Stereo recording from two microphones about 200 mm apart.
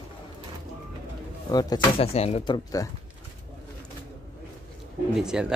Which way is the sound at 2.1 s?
30° left (ahead or behind).